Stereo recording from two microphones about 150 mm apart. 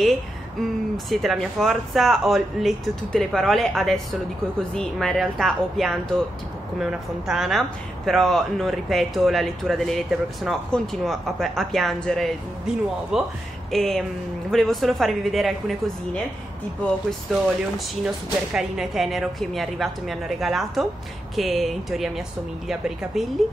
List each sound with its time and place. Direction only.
0.9 s speech: centre (ahead or behind)
17.3 s speech: 5° right (ahead or behind)